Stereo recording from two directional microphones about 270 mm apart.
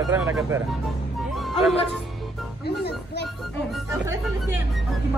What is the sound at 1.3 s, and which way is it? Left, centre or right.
Music, centre.